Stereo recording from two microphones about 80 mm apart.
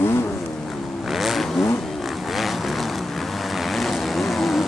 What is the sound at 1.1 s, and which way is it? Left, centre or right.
Vehicle, centre.